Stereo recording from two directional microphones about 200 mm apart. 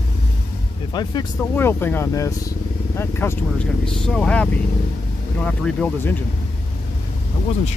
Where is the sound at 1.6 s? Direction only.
10° left (ahead or behind).